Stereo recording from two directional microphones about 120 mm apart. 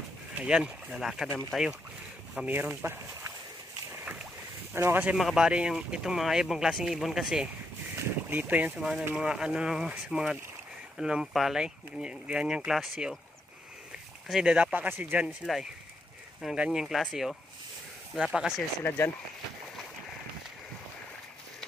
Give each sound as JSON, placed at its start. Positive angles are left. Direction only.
{"t": 0.3, "sound": "speech", "side_deg": -10}
{"t": 2.4, "sound": "speech", "side_deg": -15}
{"t": 3.9, "sound": "boat", "side_deg": -10}
{"t": 4.7, "sound": "speech", "side_deg": -20}
{"t": 5.1, "sound": "speech", "side_deg": -5}
{"t": 7.9, "sound": "speech", "side_deg": -15}
{"t": 14.2, "sound": "speech", "side_deg": -5}
{"t": 15.2, "sound": "speech", "side_deg": 0}
{"t": 18.9, "sound": "speech", "side_deg": 20}